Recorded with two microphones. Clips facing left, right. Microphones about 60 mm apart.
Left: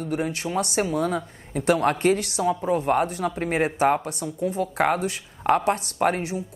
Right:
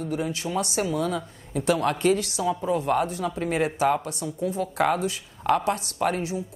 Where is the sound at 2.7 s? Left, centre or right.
Left.